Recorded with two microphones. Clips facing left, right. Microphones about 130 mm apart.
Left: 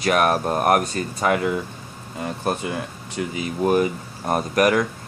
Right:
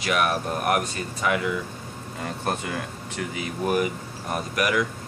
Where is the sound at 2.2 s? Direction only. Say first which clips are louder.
Left 4 dB; 20° left (ahead or behind).